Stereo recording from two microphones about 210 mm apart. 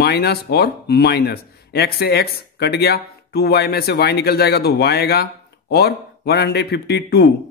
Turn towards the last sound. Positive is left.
turn(degrees=50)  # may be behind; listen again after turning